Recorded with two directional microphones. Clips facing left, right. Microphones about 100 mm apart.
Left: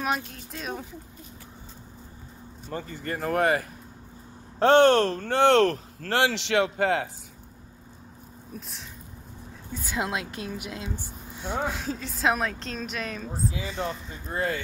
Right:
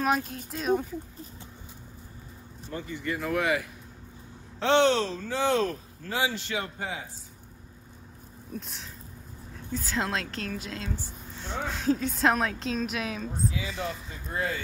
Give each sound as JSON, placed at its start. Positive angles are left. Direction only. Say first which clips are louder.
{"t": 0.0, "sound": "a woman's voice", "louder": "right 2 dB", "side_deg": 0}
{"t": 2.7, "sound": "speech", "louder": "even", "side_deg": 45}
{"t": 8.5, "sound": "a woman's voice", "louder": "right 3 dB", "side_deg": 0}
{"t": 9.7, "sound": "a woman's voice", "louder": "even", "side_deg": 15}
{"t": 11.7, "sound": "a woman's voice", "louder": "right 6 dB", "side_deg": 0}
{"t": 13.7, "sound": "speech", "louder": "left 3 dB", "side_deg": 35}